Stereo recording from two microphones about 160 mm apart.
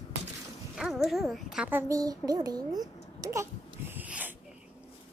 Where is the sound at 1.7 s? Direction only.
15° right (ahead or behind).